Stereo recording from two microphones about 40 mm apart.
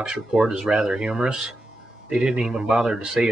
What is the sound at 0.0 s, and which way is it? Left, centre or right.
Speech, centre.